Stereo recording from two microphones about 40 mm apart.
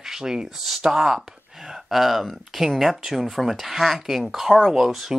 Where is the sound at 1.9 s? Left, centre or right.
Centre.